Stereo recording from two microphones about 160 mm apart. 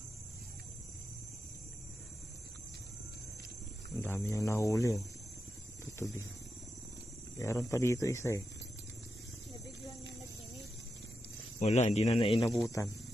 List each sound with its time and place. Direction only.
3.9 s cricket: 15° left (ahead or behind)
7.3 s speech: 20° left (ahead or behind)
11.6 s a man's voice: 45° left (ahead or behind)
12.6 s cricket: 20° left (ahead or behind)